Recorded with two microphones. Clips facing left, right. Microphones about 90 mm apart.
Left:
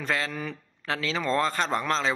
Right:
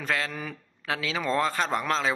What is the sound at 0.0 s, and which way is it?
A man's voice, centre (ahead or behind).